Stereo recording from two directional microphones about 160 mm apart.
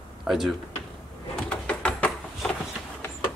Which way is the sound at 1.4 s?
5° left (ahead or behind).